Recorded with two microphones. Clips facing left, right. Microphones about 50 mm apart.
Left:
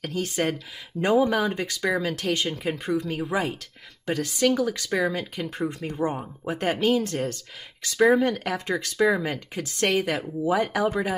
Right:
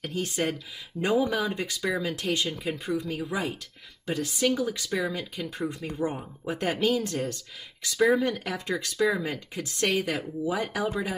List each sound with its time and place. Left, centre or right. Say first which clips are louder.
0.0 s speech: left 3 dB; left
1.0 s speech: left 4 dB; left
1.4 s speech: left 3 dB; left
2.6 s speech: left 3 dB; left
4.0 s speech: left 3 dB; left
9.2 s speech: left 3 dB; left